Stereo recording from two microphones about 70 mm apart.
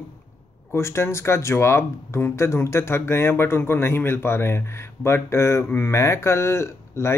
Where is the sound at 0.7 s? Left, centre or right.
Left.